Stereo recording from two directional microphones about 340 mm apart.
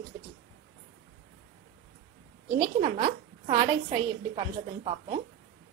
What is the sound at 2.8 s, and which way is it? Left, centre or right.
A woman's voice, centre.